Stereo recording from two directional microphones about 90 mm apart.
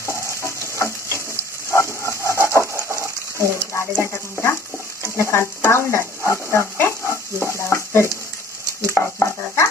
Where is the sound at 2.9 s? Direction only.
30° left (ahead or behind).